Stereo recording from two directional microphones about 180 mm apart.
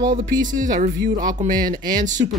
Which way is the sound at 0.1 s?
50° right (ahead or behind).